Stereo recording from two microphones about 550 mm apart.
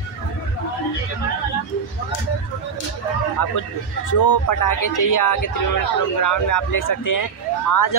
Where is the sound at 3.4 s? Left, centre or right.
Left.